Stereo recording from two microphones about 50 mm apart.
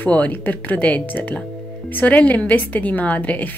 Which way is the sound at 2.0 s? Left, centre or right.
Left.